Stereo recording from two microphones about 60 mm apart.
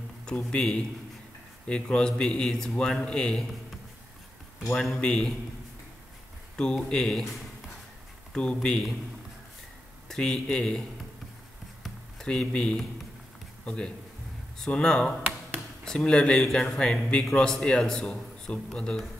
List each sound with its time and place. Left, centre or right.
0.2 s a man's voice: centre
4.7 s a man's voice: centre
5.0 s a man's voice: centre
6.5 s a man's voice: centre
8.3 s a man's voice: centre
10.0 s speech: centre
12.2 s a man's voice: centre